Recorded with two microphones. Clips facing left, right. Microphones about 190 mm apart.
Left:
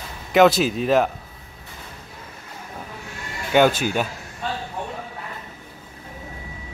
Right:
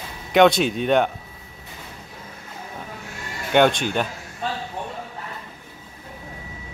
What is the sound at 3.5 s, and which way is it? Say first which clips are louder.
Speech: even; 5° left (ahead or behind).